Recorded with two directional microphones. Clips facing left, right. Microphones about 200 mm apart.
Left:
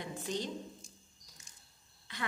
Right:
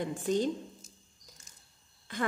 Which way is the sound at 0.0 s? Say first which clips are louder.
Right 8 dB; 50° right (ahead or behind).